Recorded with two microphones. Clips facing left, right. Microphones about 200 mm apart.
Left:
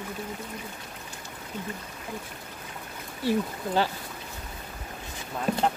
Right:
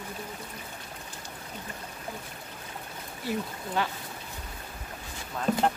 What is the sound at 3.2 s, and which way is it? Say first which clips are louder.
Speech: left 6 dB; 30° left (ahead or behind).